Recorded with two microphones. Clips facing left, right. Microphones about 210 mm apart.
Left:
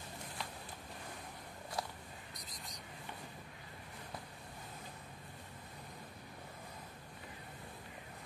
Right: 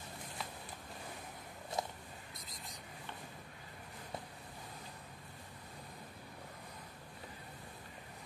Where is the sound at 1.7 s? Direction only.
20° right (ahead or behind).